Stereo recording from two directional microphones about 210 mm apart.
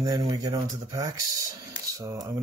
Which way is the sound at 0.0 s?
20° right (ahead or behind).